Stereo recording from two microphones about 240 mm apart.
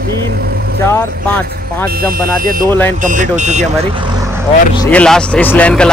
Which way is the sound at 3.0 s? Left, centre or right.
Right.